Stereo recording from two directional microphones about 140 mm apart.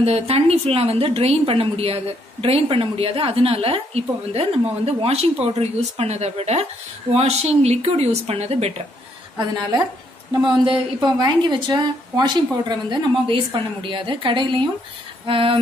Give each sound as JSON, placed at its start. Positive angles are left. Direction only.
{"t": 0.0, "sound": "a woman's voice", "side_deg": -45}
{"t": 10.4, "sound": "a woman's voice", "side_deg": -35}